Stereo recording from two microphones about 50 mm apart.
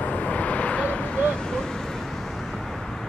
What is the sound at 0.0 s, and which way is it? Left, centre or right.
Vehicle, left.